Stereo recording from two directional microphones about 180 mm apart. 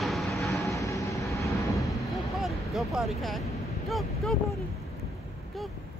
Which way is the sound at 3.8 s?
Centre (ahead or behind).